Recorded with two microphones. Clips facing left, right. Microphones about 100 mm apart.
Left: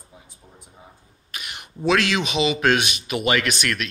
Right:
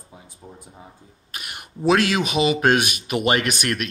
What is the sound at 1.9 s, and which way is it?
Speech, 40° right (ahead or behind).